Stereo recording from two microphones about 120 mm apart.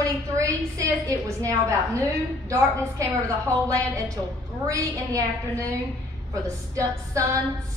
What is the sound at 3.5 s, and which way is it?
A woman's voice, 25° right (ahead or behind).